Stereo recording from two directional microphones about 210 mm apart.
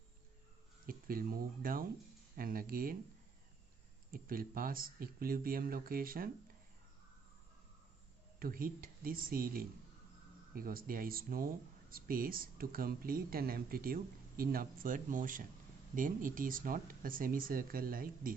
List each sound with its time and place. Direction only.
0.8 s speech: 45° right (ahead or behind)
4.1 s speech: 45° right (ahead or behind)
8.4 s speech: 45° right (ahead or behind)